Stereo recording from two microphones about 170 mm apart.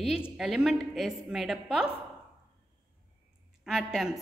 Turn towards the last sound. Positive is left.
turn(degrees=0)  # may be behind; listen again after turning